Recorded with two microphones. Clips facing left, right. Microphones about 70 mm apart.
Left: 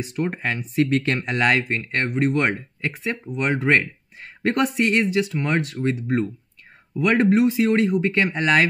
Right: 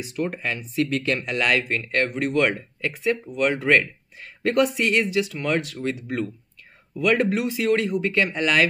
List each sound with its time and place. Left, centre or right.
0.0 s speech: left